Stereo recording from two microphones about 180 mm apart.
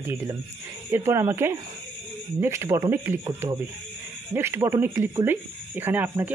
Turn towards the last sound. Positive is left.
turn(degrees=-10)  # may be behind; listen again after turning